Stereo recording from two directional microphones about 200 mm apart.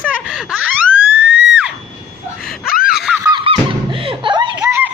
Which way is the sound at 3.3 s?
25° right (ahead or behind).